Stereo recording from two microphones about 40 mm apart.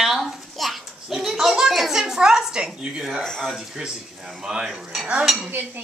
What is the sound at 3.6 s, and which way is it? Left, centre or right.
Speech, centre.